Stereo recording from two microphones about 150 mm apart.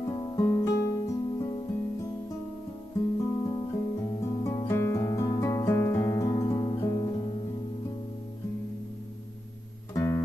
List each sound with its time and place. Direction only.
0.0 s music: 30° left (ahead or behind)
3.4 s music: 30° left (ahead or behind)
9.9 s guitar: 20° left (ahead or behind)